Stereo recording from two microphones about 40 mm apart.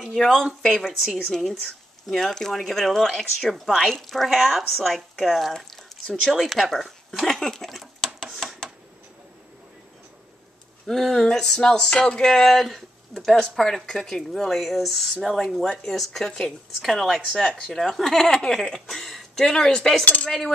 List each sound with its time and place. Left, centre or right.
0.0 s speech: centre
2.0 s speech: centre
5.5 s squish: centre
6.3 s speech: centre
8.0 s a sound: centre
10.9 s speech: centre
11.1 s a woman's voice: centre
15.7 s speech: centre
16.3 s a woman's voice: centre
16.8 s speech: centre
17.4 s speech: centre
17.6 s speech: centre
19.4 s speech: centre
20.2 s speech: centre